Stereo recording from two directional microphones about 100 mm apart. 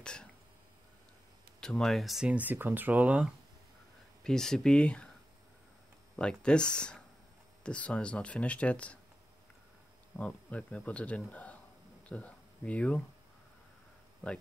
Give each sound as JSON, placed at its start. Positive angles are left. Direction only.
{"t": 0.0, "sound": "throat clearing", "side_deg": 10}
{"t": 1.6, "sound": "speech", "side_deg": 5}
{"t": 2.3, "sound": "speech", "side_deg": -20}
{"t": 4.2, "sound": "speech", "side_deg": 5}
{"t": 6.1, "sound": "speech", "side_deg": 10}
{"t": 10.1, "sound": "speech", "side_deg": 15}